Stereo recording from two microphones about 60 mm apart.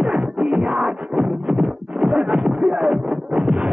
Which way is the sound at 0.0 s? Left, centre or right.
Centre.